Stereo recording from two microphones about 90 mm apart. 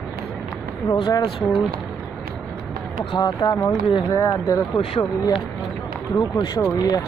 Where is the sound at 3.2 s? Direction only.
50° left (ahead or behind).